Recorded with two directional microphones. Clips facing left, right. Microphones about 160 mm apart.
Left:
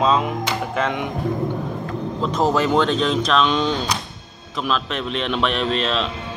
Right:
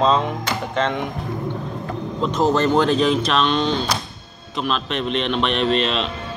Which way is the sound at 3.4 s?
5° left (ahead or behind).